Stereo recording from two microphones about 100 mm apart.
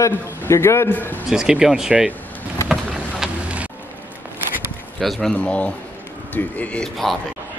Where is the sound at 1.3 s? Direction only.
5° right (ahead or behind).